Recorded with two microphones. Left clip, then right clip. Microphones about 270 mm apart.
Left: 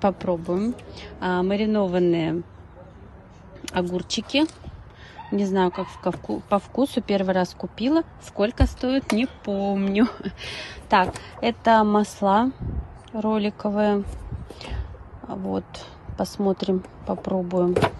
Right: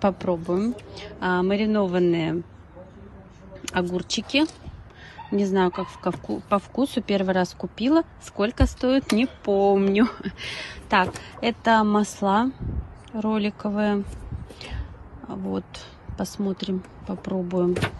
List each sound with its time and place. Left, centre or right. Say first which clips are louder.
0.0 s speech: left 1 dB; centre
3.9 s speech: even; centre
15.2 s speech: left 2 dB; centre